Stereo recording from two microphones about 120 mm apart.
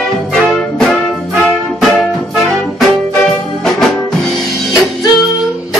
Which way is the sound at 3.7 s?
5° left (ahead or behind).